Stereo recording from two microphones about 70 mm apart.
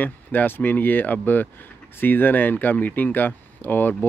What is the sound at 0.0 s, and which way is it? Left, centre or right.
Speech, left.